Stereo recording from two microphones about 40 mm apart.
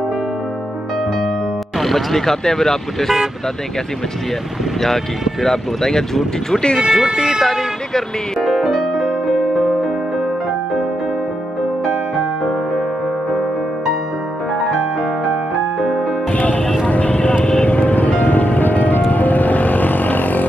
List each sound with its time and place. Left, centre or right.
1.8 s speech: centre
5.4 s speech: centre
6.8 s speech: centre
8.4 s music: centre
15.8 s music: centre
16.3 s music: left
16.8 s vehicle: left
17.6 s music: left
19.1 s vehicle: left